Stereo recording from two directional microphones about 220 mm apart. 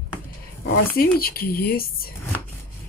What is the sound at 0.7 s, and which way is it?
Speech, 45° left (ahead or behind).